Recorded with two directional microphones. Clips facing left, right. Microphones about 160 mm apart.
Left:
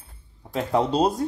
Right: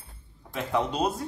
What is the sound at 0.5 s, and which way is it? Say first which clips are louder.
Speech: left 5 dB; 35° left (ahead or behind).